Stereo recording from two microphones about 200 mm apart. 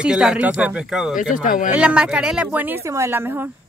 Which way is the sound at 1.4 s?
40° left (ahead or behind).